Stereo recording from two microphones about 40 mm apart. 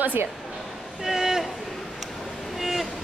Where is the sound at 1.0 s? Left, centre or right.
Centre.